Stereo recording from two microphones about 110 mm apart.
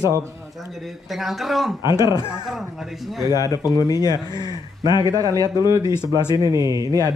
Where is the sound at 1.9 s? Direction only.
30° right (ahead or behind).